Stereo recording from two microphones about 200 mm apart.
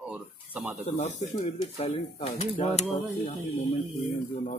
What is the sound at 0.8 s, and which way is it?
Speech, 35° left (ahead or behind).